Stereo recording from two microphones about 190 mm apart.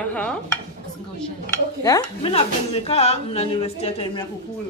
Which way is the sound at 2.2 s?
30° left (ahead or behind).